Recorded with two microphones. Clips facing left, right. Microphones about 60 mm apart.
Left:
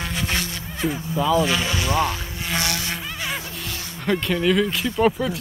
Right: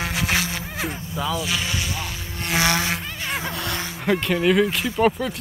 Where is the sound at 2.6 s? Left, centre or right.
Right.